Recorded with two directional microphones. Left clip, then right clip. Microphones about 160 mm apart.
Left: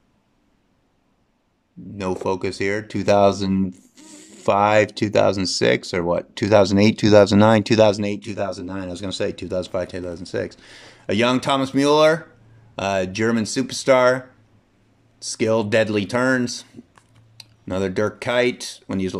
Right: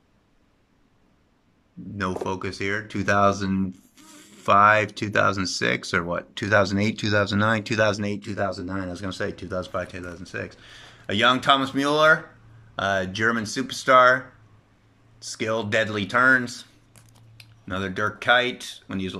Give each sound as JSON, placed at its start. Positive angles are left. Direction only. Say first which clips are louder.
{"t": 2.0, "sound": "speech", "louder": "left 4 dB", "side_deg": 25}